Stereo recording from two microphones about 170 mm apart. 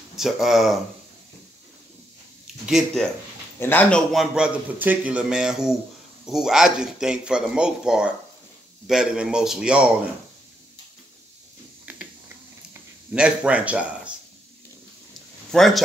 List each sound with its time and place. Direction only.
0.1 s a man's voice: centre (ahead or behind)
2.6 s a man's voice: centre (ahead or behind)
3.5 s a man's voice: 10° left (ahead or behind); by 9.8 s 5° right (ahead or behind)
11.8 s a sound: 10° right (ahead or behind)
13.1 s speech: 5° right (ahead or behind)
15.5 s a man's voice: centre (ahead or behind)